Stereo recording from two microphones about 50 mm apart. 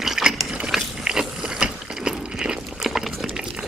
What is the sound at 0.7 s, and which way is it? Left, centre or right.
Biting, centre.